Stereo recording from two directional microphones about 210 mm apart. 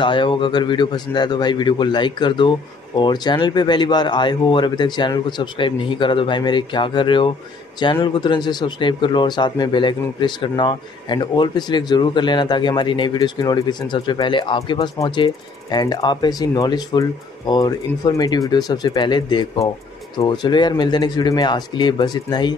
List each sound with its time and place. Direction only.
0.0 s speech: 25° left (ahead or behind)